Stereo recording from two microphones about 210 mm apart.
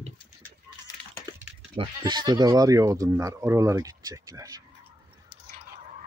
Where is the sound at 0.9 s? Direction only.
20° left (ahead or behind).